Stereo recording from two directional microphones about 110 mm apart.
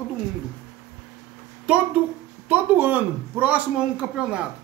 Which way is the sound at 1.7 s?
15° right (ahead or behind).